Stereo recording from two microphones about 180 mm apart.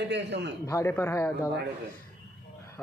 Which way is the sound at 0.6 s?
15° left (ahead or behind).